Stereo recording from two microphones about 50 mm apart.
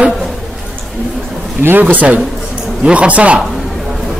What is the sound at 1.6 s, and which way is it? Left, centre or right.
A man's voice, right.